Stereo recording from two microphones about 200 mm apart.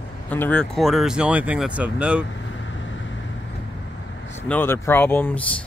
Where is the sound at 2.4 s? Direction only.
70° left (ahead or behind).